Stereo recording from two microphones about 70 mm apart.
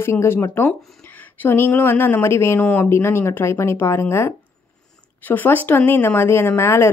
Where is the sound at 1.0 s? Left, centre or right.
Left.